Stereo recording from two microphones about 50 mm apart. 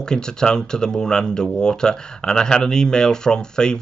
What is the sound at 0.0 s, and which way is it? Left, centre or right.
Speech, centre.